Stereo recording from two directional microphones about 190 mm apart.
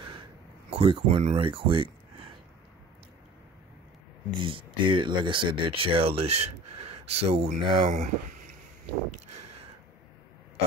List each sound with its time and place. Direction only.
0.7 s speech: 30° right (ahead or behind)
4.4 s speech: 25° right (ahead or behind)